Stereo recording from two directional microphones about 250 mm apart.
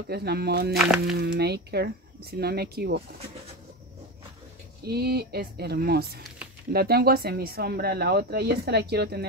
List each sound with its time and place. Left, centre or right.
0.1 s speech: right
0.7 s speech: centre
1.2 s speech: right
4.8 s speech: right